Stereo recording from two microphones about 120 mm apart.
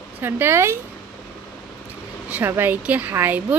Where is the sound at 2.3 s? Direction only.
15° right (ahead or behind).